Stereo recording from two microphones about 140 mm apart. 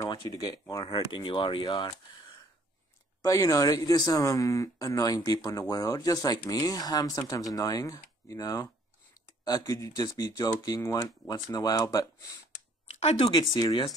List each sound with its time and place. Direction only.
0.0 s speech: 25° left (ahead or behind)
0.8 s speech: 40° left (ahead or behind)
3.3 s speech: 25° left (ahead or behind)
13.0 s speech: 40° left (ahead or behind)